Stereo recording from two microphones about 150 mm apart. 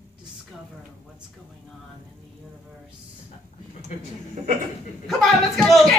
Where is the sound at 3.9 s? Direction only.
50° left (ahead or behind).